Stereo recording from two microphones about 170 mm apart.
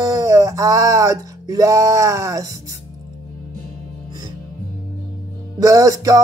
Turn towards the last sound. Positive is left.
turn(degrees=-20)  # may be behind; listen again after turning